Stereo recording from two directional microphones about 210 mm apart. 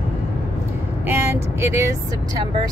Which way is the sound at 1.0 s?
10° right (ahead or behind).